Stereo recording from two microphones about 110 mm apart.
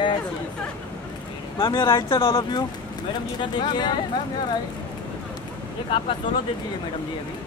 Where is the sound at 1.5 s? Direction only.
45° left (ahead or behind).